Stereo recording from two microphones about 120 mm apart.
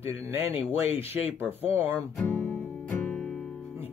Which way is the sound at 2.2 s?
10° left (ahead or behind).